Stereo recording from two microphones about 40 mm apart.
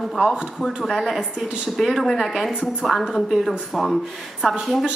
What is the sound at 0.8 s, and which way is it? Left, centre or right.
A woman's voice, centre.